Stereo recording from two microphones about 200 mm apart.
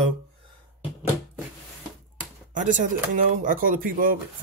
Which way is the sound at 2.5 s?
40° right (ahead or behind).